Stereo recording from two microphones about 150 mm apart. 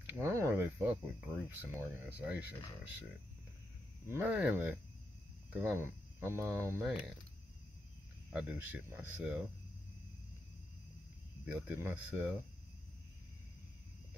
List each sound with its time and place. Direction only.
0.0 s a sound: 15° right (ahead or behind)
1.5 s speech: 15° right (ahead or behind)
4.1 s speech: 10° right (ahead or behind)
6.8 s speech: 5° right (ahead or behind)
8.3 s speech: 10° right (ahead or behind)
11.4 s speech: 10° right (ahead or behind)